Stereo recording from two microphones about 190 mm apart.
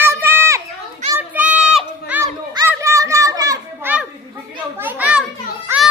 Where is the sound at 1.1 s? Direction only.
10° right (ahead or behind).